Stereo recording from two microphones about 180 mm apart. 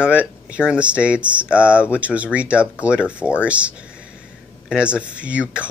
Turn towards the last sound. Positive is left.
turn(degrees=-5)  # may be behind; listen again after turning